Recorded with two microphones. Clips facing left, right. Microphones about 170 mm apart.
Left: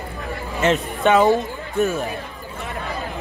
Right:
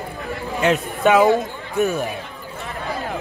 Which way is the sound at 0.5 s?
Centre (ahead or behind).